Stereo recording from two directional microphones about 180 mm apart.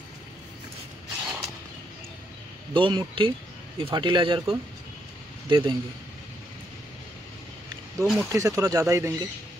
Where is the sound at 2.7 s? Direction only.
30° right (ahead or behind).